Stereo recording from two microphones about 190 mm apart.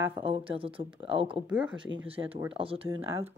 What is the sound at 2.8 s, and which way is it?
Speech, 15° right (ahead or behind).